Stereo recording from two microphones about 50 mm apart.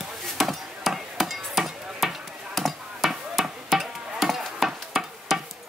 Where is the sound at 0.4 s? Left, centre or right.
Centre.